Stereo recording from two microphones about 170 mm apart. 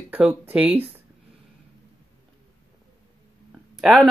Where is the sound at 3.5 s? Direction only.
5° right (ahead or behind).